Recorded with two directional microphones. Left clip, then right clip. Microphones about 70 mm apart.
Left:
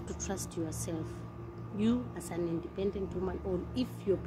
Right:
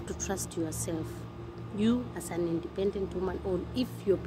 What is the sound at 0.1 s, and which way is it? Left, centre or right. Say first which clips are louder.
Speech: right 4 dB; centre.